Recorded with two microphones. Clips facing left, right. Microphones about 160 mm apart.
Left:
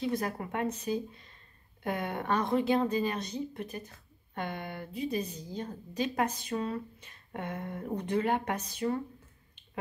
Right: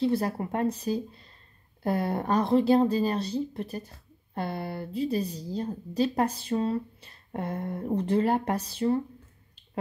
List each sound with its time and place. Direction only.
0.0 s speech: 30° right (ahead or behind)